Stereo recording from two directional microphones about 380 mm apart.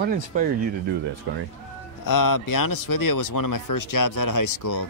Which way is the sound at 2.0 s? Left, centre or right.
Left.